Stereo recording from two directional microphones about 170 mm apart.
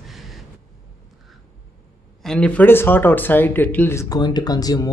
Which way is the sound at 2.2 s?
5° left (ahead or behind).